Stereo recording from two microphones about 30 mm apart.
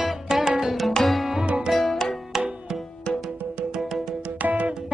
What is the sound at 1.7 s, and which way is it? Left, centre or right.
Tabla, centre.